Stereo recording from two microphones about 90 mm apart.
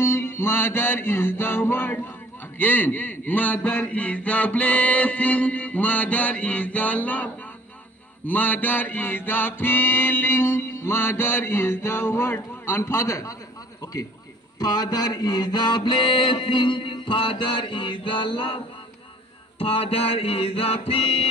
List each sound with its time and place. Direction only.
0.0 s mantra: 30° left (ahead or behind)
2.6 s a sound: 20° left (ahead or behind)
8.3 s mantra: 20° left (ahead or behind); by 17.9 s 70° left (ahead or behind)
18.0 s music: 70° left (ahead or behind)
19.6 s music: 90° left